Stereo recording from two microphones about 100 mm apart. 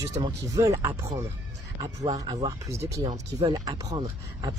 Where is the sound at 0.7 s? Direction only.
25° right (ahead or behind).